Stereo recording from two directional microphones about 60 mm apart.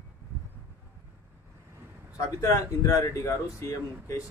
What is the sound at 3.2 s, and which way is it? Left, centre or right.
Speech, left.